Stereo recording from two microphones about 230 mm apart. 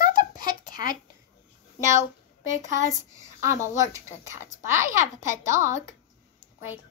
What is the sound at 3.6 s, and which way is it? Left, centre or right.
A child's voice, centre.